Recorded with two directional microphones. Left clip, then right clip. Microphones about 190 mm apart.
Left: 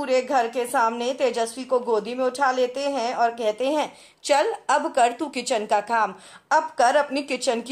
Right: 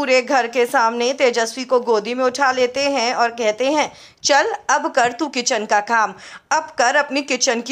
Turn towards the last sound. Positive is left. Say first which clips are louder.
# right 5 dB
turn(degrees=-15)  # may be behind; listen again after turning